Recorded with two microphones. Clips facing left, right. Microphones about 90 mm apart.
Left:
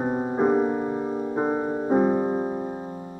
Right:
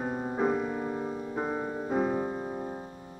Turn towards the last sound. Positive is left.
turn(degrees=30)  # may be behind; listen again after turning